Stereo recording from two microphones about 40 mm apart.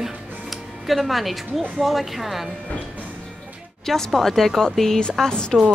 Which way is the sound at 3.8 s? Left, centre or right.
Centre.